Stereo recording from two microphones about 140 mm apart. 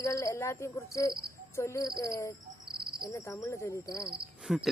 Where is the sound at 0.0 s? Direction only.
20° left (ahead or behind).